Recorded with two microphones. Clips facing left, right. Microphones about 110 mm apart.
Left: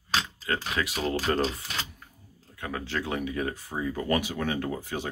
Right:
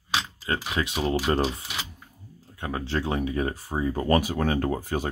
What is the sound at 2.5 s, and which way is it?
Speech, 30° right (ahead or behind).